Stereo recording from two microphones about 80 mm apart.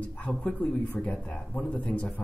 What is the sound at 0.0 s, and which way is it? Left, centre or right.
Speech, centre.